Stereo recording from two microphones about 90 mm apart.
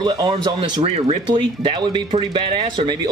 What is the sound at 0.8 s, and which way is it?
A man's voice, 90° right.